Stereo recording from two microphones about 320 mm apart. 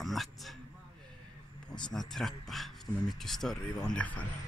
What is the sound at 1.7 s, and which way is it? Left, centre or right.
Speech, centre.